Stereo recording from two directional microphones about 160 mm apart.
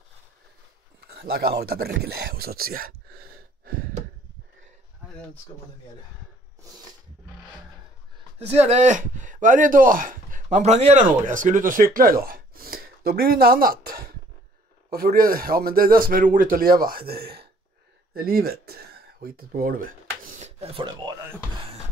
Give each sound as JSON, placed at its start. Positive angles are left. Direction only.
{"t": 1.0, "sound": "a man's voice", "side_deg": -80}
{"t": 8.4, "sound": "speech", "side_deg": -40}